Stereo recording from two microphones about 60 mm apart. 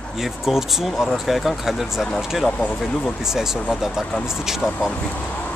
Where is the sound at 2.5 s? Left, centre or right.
Left.